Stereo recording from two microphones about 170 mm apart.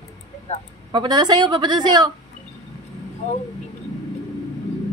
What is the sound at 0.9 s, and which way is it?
A woman's voice, 25° right (ahead or behind).